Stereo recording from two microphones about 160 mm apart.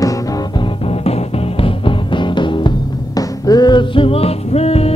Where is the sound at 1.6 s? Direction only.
35° left (ahead or behind).